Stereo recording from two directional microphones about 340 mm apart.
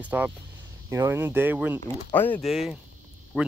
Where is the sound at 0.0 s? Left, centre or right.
Centre.